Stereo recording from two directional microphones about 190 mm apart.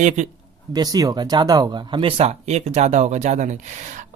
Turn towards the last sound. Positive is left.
turn(degrees=-40)  # may be behind; listen again after turning